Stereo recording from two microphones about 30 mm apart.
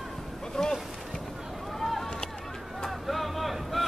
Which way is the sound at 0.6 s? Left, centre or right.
Left.